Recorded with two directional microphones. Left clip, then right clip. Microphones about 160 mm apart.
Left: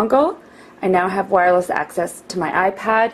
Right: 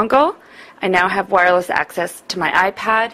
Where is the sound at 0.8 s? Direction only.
30° right (ahead or behind).